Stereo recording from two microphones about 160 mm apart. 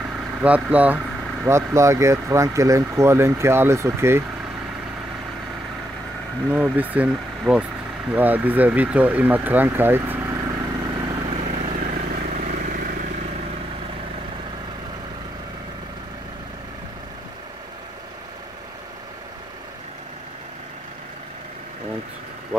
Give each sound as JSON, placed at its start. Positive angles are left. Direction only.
{"t": 0.4, "sound": "speech", "side_deg": -10}
{"t": 6.5, "sound": "speech", "side_deg": -10}
{"t": 11.1, "sound": "vehicle", "side_deg": -35}
{"t": 11.9, "sound": "vehicle", "side_deg": -55}